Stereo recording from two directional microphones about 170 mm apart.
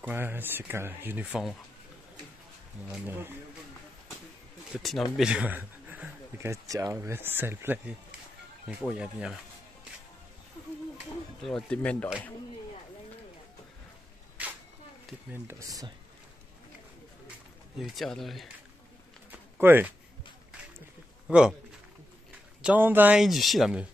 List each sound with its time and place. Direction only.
0.0 s speech: 10° right (ahead or behind)
2.9 s speech: 10° right (ahead or behind)
4.7 s speech: centre (ahead or behind)
8.9 s speech: 5° right (ahead or behind)
11.4 s speech: 5° left (ahead or behind)
15.3 s speech: 15° right (ahead or behind)
17.7 s speech: centre (ahead or behind)
19.3 s a sound: 10° right (ahead or behind)
21.3 s speech: 5° right (ahead or behind)
22.6 s speech: 10° right (ahead or behind)